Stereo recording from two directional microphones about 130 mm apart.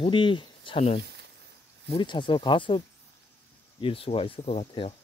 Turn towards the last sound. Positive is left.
turn(degrees=45)  # may be behind; listen again after turning